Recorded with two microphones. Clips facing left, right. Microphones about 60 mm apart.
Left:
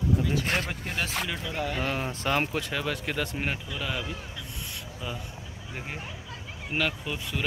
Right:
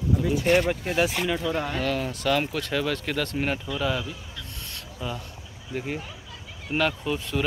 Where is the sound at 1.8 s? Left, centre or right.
Left.